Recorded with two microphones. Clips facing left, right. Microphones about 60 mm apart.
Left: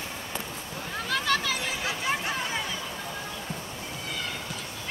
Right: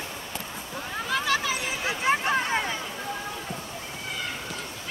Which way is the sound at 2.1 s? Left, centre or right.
Right.